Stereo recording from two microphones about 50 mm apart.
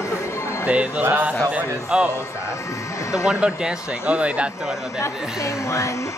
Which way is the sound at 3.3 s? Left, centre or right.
Centre.